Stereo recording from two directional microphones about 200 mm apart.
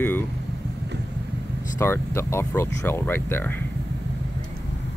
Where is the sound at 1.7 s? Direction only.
10° left (ahead or behind).